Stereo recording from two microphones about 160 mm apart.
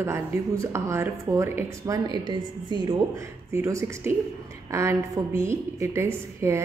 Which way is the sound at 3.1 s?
20° right (ahead or behind).